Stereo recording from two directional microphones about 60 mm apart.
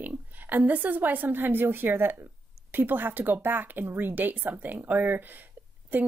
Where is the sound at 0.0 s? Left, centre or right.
Right.